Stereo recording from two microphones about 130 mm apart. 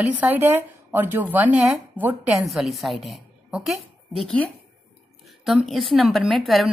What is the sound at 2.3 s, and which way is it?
A woman's voice, centre (ahead or behind).